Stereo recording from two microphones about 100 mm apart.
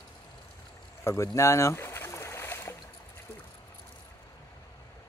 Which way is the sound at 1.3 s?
30° left (ahead or behind).